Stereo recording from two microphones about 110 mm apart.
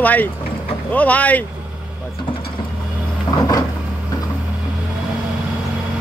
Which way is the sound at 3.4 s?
35° left (ahead or behind).